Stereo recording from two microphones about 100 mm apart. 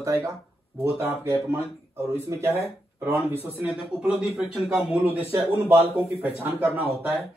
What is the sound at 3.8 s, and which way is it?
A man's voice, 10° right (ahead or behind).